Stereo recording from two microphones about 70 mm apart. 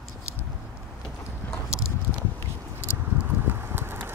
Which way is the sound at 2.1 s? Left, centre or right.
Left.